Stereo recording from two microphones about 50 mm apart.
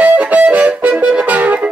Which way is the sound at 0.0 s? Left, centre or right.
Right.